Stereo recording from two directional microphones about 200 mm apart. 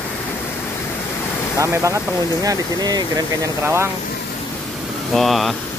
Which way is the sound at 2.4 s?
20° right (ahead or behind).